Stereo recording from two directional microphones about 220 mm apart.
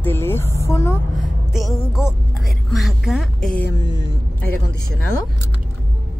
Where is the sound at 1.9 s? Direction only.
Centre (ahead or behind).